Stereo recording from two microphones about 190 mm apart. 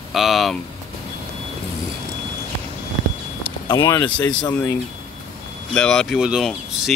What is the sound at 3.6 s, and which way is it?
Speech, 20° left (ahead or behind).